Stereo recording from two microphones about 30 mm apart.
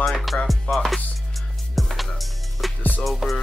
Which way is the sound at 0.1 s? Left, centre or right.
Centre.